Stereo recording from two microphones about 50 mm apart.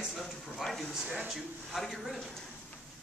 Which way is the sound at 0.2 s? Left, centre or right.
Centre.